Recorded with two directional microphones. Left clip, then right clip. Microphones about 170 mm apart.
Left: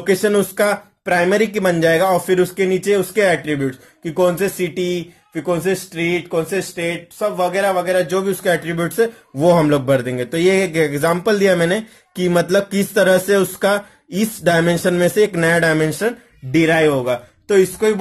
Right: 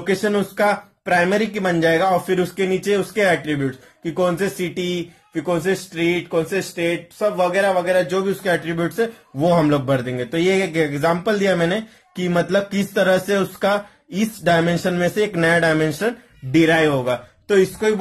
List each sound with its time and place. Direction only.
0.0 s speech: 25° left (ahead or behind)